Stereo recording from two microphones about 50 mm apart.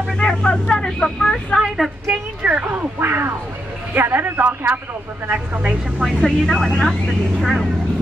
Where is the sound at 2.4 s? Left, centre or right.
Right.